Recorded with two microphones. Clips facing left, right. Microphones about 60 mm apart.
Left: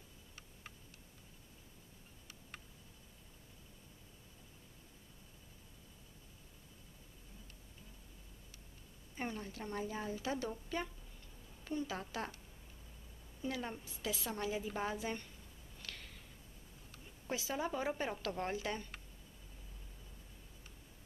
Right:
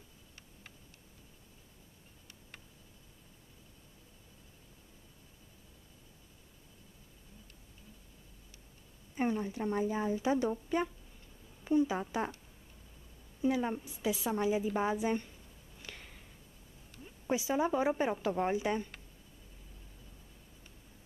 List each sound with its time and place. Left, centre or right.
9.1 s a woman's voice: centre
13.4 s a woman's voice: centre
15.8 s a sound: centre
17.0 s a woman's voice: centre